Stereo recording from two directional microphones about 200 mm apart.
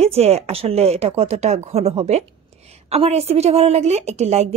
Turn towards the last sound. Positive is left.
turn(degrees=-35)  # may be behind; listen again after turning